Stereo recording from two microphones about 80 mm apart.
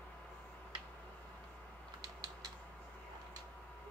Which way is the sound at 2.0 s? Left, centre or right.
Right.